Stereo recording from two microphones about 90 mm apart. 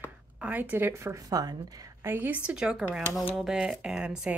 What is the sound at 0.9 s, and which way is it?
Speech, 30° right (ahead or behind).